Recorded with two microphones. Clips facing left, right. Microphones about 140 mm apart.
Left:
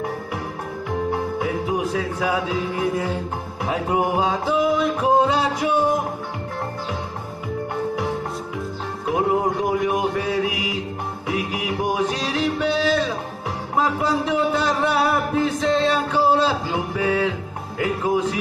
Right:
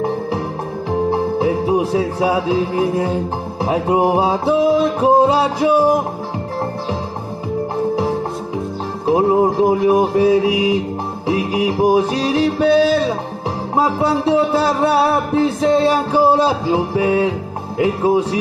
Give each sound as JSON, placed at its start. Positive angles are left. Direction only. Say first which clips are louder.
{"t": 1.1, "sound": "music", "louder": "right 7 dB", "side_deg": -30}
{"t": 7.7, "sound": "music", "louder": "right 6 dB", "side_deg": -30}
{"t": 16.2, "sound": "a man's voice", "louder": "right 4 dB", "side_deg": -10}
{"t": 16.4, "sound": "music", "louder": "right 6 dB", "side_deg": -30}